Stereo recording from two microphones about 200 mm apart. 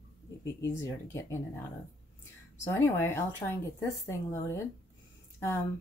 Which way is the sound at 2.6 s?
10° left (ahead or behind).